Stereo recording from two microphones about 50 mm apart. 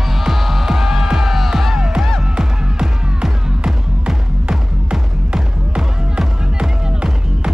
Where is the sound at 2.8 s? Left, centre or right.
Centre.